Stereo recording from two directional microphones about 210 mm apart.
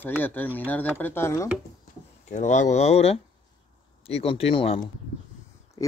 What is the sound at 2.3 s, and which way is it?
Speech, 35° left (ahead or behind).